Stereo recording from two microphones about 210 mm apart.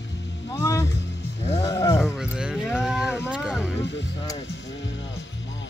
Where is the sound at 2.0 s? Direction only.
Centre (ahead or behind).